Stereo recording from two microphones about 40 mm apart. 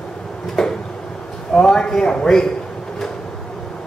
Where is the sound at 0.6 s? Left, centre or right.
Centre.